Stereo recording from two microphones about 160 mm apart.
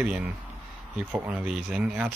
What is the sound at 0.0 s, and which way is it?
Speech, 5° right (ahead or behind).